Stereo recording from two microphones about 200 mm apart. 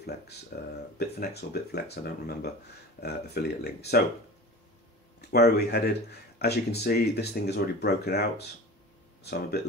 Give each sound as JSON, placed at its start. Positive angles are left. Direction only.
{"t": 0.5, "sound": "speech", "side_deg": 50}
{"t": 5.3, "sound": "speech", "side_deg": 50}